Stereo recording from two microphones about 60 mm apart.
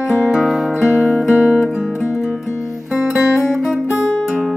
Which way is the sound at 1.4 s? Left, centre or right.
Centre.